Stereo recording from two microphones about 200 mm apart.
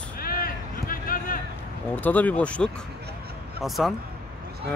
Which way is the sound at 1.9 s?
10° left (ahead or behind).